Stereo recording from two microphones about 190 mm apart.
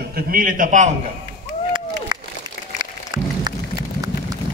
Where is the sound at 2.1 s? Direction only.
25° right (ahead or behind).